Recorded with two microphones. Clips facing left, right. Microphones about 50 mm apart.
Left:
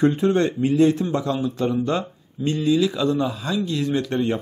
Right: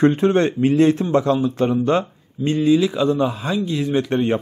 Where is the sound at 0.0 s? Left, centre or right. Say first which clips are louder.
Right 3 dB; right.